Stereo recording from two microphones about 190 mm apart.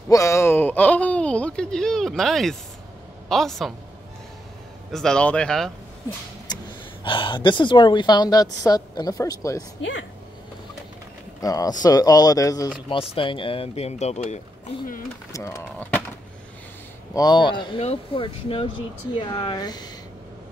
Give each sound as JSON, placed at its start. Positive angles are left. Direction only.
{"t": 0.1, "sound": "a man's voice", "side_deg": 15}
{"t": 4.9, "sound": "a man's voice", "side_deg": 5}
{"t": 6.5, "sound": "gasp", "side_deg": 20}
{"t": 7.1, "sound": "speech", "side_deg": 25}
{"t": 11.4, "sound": "speech", "side_deg": 20}
{"t": 15.3, "sound": "speech", "side_deg": 15}
{"t": 17.1, "sound": "speech", "side_deg": 20}